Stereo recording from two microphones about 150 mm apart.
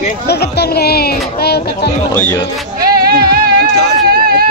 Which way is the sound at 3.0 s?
85° right.